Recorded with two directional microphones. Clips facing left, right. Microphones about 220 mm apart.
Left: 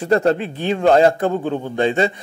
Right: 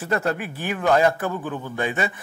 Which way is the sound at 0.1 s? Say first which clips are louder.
Left 8 dB; 25° left (ahead or behind).